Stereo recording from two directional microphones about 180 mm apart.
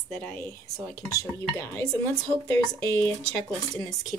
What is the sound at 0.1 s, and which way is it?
Speech, 10° left (ahead or behind).